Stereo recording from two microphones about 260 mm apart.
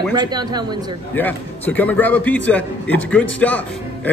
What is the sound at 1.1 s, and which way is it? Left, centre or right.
A man's voice, centre.